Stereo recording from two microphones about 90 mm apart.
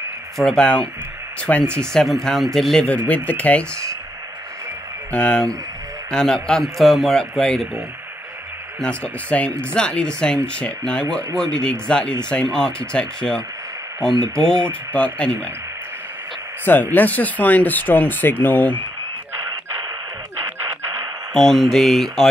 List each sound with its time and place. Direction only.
0.4 s a man's voice: 5° left (ahead or behind)
5.1 s a man's voice: 10° left (ahead or behind)
8.8 s speech: 15° left (ahead or behind)
16.6 s speech: 20° left (ahead or behind)
21.3 s a man's voice: 5° left (ahead or behind)